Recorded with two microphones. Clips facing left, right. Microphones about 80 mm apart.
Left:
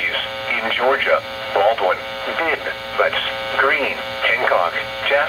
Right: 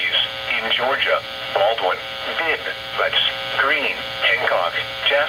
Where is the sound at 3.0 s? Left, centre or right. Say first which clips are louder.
Left 3 dB; left.